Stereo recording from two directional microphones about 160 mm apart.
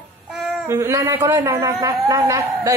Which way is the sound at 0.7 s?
15° right (ahead or behind).